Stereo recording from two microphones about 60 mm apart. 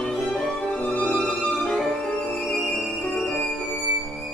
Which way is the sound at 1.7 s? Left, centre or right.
Centre.